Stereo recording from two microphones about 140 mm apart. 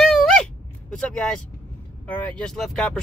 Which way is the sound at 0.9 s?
5° left (ahead or behind).